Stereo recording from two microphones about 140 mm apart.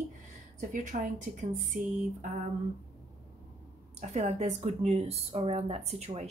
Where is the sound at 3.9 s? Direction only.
50° right (ahead or behind).